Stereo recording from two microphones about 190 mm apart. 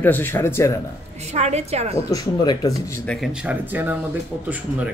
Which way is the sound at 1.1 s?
35° right (ahead or behind).